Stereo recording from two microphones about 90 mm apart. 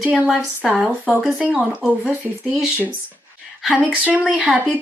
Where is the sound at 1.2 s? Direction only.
15° right (ahead or behind).